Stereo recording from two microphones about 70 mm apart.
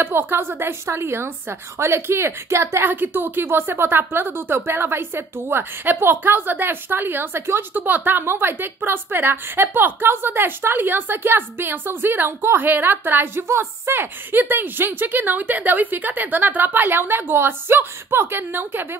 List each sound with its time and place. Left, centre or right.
0.0 s a woman's voice: right
2.8 s a woman's voice: right